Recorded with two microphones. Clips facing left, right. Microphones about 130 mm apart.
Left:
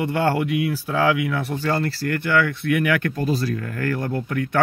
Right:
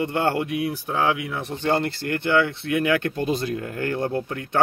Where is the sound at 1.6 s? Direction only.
25° right (ahead or behind).